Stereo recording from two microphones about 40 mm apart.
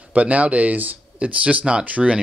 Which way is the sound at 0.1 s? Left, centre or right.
Right.